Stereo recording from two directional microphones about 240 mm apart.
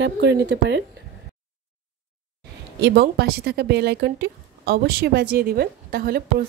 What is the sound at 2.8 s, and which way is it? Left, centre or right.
Speech, right.